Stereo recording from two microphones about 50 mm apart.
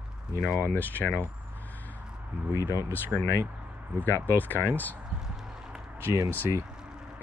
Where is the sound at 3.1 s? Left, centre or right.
Right.